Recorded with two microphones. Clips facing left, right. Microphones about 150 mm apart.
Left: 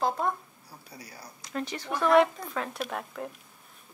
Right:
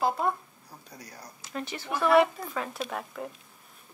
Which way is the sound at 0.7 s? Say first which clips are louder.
Even; 10° left (ahead or behind).